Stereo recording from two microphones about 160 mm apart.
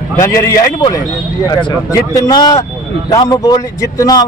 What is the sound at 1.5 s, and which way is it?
A man's voice, 25° left (ahead or behind).